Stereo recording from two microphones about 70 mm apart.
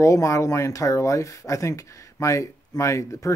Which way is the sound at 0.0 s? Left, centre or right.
Left.